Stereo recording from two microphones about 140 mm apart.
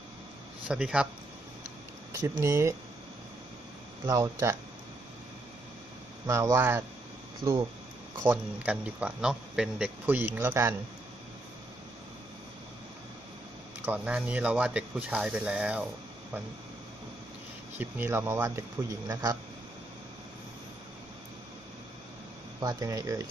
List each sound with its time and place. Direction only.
0.7 s a man's voice: 10° right (ahead or behind)
2.1 s a man's voice: 20° right (ahead or behind)
4.1 s a man's voice: 20° right (ahead or behind)
6.2 s a man's voice: 20° right (ahead or behind)
7.4 s a man's voice: 30° right (ahead or behind)
8.2 s a man's voice: 15° right (ahead or behind)
13.8 s a man's voice: 10° right (ahead or behind)
17.7 s a man's voice: 15° right (ahead or behind)
22.6 s a man's voice: 25° right (ahead or behind)